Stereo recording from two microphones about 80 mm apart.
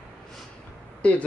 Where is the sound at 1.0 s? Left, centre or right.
Centre.